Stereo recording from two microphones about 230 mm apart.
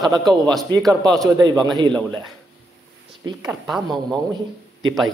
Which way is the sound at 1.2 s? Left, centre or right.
Centre.